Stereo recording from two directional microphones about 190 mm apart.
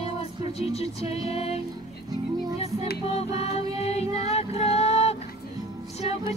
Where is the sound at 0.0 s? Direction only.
30° left (ahead or behind).